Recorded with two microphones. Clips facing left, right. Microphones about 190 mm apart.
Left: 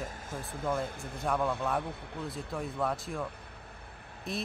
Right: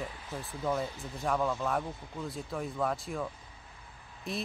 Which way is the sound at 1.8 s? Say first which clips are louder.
Even; 65° left (ahead or behind).